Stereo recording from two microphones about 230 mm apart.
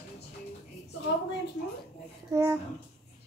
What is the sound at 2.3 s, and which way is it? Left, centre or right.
Speech, centre.